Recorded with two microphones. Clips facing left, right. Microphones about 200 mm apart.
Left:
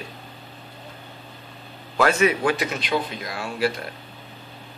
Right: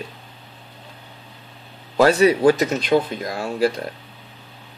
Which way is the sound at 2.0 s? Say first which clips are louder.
Right 5 dB; 35° right (ahead or behind).